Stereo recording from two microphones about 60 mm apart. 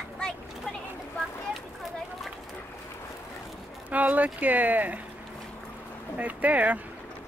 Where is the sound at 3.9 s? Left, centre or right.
Right.